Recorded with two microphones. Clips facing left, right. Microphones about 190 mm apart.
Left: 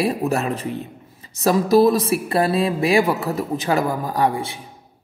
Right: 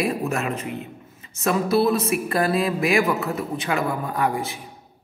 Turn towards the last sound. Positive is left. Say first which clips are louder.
# left 3 dB
turn(degrees=30)  # may be behind; listen again after turning